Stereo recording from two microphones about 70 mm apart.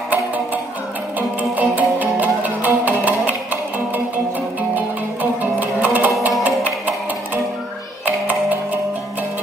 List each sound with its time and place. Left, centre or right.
1.6 s music: right
4.7 s music: right
8.0 s music: right